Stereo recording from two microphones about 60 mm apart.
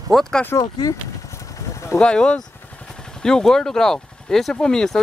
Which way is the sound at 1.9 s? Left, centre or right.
Centre.